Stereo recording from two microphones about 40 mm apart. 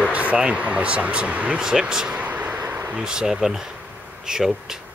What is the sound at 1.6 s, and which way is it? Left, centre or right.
Speech, centre.